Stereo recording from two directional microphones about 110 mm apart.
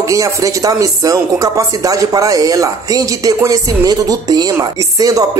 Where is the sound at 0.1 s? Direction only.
30° right (ahead or behind).